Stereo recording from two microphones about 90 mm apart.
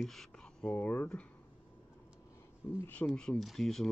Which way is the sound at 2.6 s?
30° left (ahead or behind).